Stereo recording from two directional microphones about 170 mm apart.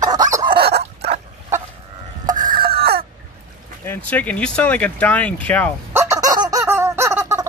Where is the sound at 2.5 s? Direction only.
65° right (ahead or behind).